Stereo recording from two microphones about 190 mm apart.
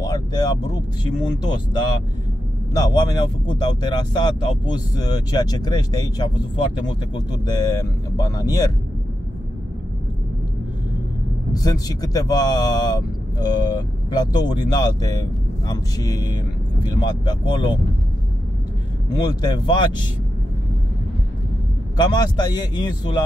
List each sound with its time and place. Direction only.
0.0 s vehicle: 20° left (ahead or behind)
2.7 s speech: 20° left (ahead or behind)
7.4 s speech: 20° left (ahead or behind)
11.5 s speech: 20° left (ahead or behind)
19.0 s speech: 20° left (ahead or behind)
21.9 s speech: 20° left (ahead or behind)